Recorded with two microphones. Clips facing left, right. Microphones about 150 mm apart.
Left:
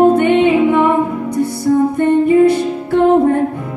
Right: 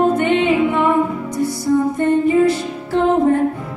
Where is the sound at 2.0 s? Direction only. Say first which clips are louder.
Left 5 dB; 60° left (ahead or behind).